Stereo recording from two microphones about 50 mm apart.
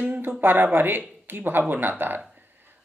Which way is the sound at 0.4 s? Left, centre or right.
Right.